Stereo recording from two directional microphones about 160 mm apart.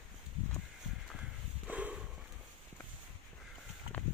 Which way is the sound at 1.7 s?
10° right (ahead or behind).